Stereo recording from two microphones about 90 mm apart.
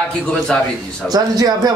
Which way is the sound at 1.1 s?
45° right (ahead or behind).